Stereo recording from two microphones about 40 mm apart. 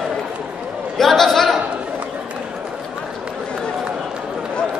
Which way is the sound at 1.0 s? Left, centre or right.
Centre.